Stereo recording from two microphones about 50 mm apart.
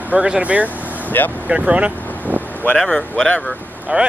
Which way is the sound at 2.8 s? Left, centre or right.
Centre.